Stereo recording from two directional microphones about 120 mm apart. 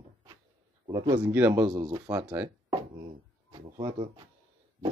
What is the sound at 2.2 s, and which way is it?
Speech, 10° right (ahead or behind).